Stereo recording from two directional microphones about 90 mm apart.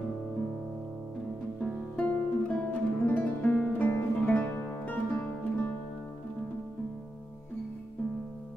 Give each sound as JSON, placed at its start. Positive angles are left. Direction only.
{"t": 1.6, "sound": "music", "side_deg": 15}